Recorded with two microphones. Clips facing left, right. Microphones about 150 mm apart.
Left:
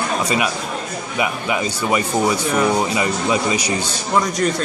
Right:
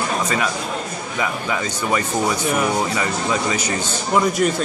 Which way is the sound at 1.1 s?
15° left (ahead or behind).